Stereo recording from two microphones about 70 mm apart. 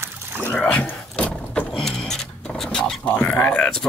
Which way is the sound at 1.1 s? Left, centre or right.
Centre.